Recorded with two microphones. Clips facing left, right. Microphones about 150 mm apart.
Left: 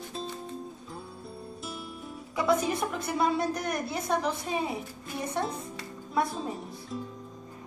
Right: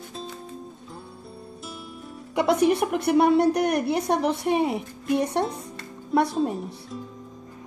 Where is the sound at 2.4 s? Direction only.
70° right (ahead or behind).